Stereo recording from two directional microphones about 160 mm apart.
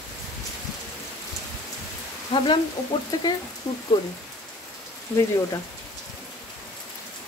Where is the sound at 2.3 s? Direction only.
30° left (ahead or behind).